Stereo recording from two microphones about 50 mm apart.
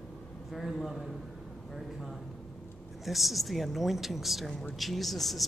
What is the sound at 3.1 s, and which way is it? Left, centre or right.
Speech, centre.